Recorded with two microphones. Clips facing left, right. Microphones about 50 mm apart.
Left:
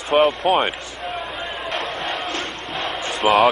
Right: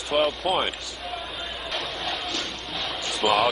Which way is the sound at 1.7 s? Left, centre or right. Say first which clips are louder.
Left 4 dB; left.